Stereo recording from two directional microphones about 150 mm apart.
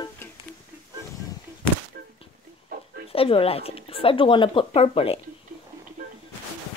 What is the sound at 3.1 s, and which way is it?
Speech, 40° left (ahead or behind).